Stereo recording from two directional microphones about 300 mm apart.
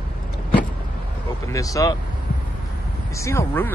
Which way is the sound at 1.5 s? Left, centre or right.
Centre.